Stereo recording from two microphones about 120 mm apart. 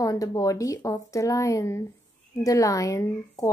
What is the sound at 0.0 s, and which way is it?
Speech, 30° left (ahead or behind).